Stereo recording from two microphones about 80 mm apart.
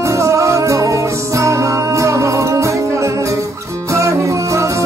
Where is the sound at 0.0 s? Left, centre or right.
Right.